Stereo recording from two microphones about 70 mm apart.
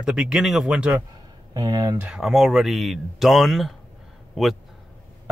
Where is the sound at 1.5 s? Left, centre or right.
Right.